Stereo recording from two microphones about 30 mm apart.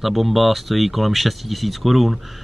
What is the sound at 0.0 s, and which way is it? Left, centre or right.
Speech, centre.